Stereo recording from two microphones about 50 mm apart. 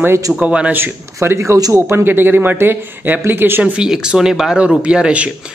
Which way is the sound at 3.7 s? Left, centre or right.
Centre.